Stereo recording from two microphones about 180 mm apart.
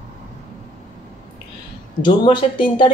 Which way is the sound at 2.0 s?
25° left (ahead or behind).